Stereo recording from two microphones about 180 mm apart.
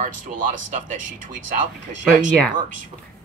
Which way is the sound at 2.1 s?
45° right (ahead or behind).